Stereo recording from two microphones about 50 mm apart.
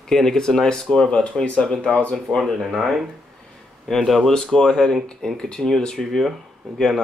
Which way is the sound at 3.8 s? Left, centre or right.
Centre.